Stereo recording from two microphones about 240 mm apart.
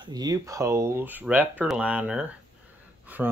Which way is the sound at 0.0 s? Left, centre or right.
Centre.